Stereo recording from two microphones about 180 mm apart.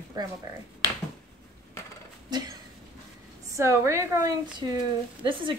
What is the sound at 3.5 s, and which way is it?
A woman's voice, 15° right (ahead or behind).